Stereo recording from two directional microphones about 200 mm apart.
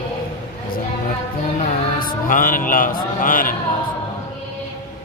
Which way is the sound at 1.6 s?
45° left (ahead or behind).